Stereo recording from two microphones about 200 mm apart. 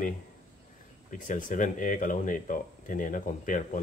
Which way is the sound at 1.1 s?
40° left (ahead or behind).